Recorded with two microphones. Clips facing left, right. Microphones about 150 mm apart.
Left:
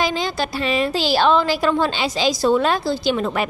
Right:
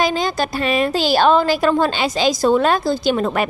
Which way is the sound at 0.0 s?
45° right (ahead or behind).